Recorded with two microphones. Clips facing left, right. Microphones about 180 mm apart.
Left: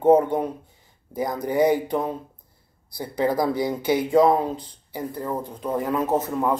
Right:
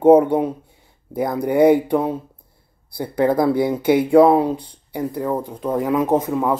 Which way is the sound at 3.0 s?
55° right (ahead or behind).